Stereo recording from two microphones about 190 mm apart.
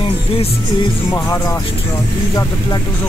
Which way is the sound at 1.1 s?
15° left (ahead or behind).